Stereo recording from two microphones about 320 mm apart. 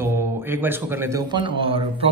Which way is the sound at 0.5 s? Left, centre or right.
Centre.